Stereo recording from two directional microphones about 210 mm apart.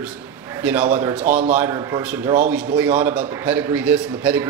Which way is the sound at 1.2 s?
35° right (ahead or behind).